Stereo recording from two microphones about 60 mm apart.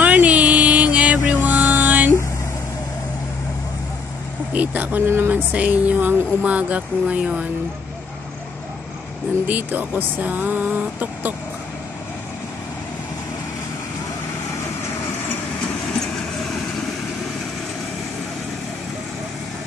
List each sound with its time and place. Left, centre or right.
0.0 s a sound: right
1.3 s music: right
4.5 s speech: right
5.0 s speech: right
5.3 s speech: right
9.5 s speech: right